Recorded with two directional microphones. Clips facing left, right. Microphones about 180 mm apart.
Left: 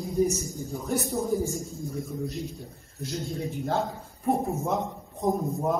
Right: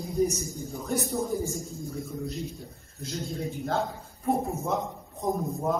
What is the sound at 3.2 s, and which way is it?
Speech, 15° left (ahead or behind).